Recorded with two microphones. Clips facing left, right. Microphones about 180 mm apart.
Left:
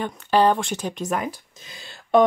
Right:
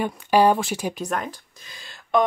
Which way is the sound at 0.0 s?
10° right (ahead or behind).